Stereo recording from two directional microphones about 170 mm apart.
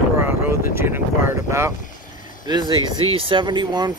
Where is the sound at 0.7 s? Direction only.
15° right (ahead or behind).